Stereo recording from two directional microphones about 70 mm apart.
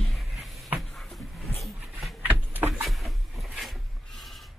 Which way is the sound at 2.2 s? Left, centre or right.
Right.